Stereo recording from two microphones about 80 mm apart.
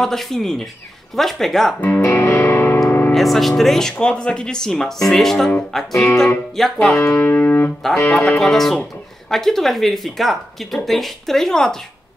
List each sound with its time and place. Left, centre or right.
0.0 s speech: centre
1.8 s music: left
3.1 s speech: centre
7.0 s music: left
7.2 s music: left
8.1 s speech: centre